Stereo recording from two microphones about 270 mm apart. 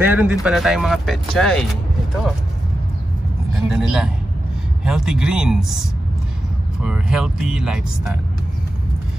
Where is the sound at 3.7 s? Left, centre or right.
Centre.